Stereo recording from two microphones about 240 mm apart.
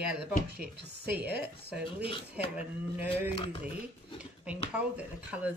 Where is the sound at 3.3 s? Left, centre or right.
Left.